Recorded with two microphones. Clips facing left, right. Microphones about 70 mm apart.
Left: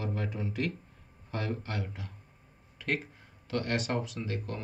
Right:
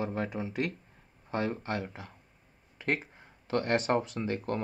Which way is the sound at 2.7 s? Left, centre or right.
Right.